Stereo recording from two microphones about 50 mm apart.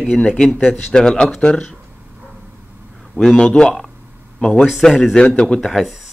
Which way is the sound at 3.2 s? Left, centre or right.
Centre.